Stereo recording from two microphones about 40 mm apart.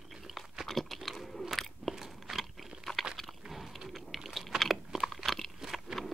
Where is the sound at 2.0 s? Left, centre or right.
Centre.